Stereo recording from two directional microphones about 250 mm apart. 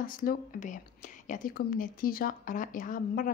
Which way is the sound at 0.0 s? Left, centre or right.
Left.